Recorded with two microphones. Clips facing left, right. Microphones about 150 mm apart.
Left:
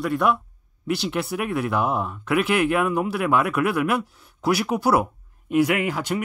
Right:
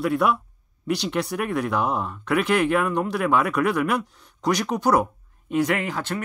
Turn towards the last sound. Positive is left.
turn(degrees=10)  # may be behind; listen again after turning